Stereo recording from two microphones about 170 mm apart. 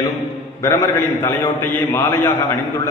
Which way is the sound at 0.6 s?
15° left (ahead or behind).